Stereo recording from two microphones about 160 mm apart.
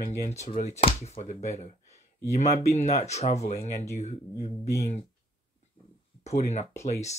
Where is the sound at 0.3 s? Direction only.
45° left (ahead or behind).